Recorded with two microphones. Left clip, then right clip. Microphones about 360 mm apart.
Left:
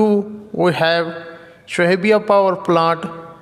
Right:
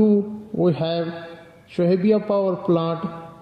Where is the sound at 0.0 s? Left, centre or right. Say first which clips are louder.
Left 3 dB; left.